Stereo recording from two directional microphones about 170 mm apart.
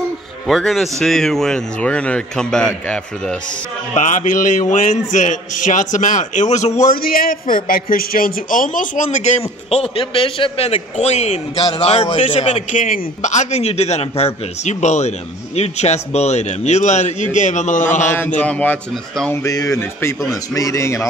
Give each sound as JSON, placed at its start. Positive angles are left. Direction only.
{"t": 0.5, "sound": "speech", "side_deg": 0}
{"t": 3.9, "sound": "a man's voice", "side_deg": 45}
{"t": 18.4, "sound": "speech", "side_deg": 10}
{"t": 19.4, "sound": "speech", "side_deg": 20}